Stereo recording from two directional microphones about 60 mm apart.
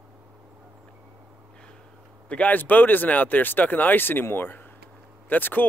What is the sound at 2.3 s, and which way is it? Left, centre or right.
Speech, left.